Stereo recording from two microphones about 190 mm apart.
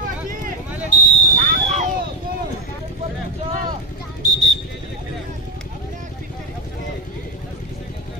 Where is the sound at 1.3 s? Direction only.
40° right (ahead or behind).